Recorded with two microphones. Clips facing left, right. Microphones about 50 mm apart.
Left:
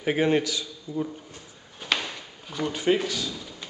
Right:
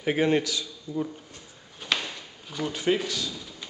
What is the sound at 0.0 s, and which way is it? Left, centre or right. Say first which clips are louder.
Speech: left 1 dB; centre.